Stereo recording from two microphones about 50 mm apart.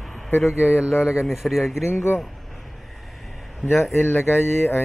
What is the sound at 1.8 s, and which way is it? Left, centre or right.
Speech, left.